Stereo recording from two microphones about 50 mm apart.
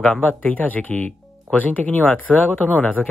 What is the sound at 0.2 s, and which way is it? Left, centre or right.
Speech, left.